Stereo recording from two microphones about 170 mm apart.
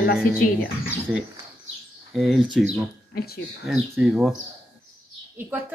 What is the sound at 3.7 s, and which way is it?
Speech, 5° right (ahead or behind).